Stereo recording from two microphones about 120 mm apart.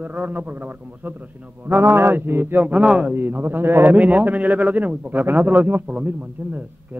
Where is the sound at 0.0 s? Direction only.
15° right (ahead or behind).